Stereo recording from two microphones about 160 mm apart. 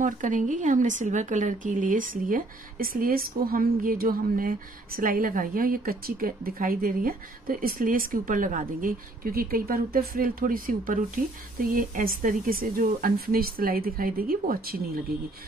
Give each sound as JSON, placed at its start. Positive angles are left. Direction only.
{"t": 0.0, "sound": "a woman's voice", "side_deg": -55}